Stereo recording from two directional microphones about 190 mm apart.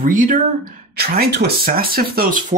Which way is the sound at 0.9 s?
55° right (ahead or behind).